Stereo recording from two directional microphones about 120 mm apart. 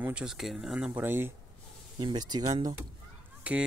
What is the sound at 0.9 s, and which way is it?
Speech, 15° right (ahead or behind).